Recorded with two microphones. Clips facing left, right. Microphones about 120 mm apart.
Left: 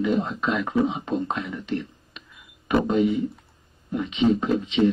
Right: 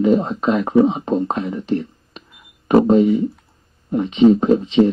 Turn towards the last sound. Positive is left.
turn(degrees=-35)  # may be behind; listen again after turning